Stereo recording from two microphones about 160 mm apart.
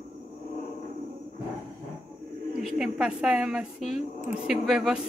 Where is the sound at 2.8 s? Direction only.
5° right (ahead or behind).